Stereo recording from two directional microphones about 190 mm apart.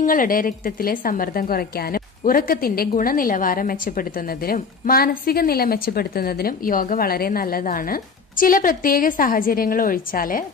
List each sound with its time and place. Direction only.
0.0 s a woman's voice: 45° left (ahead or behind)